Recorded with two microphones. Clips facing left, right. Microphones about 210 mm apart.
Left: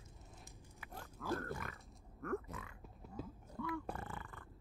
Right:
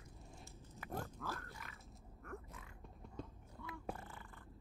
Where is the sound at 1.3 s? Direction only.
55° left (ahead or behind).